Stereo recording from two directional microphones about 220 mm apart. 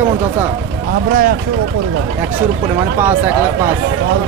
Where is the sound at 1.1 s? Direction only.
40° right (ahead or behind).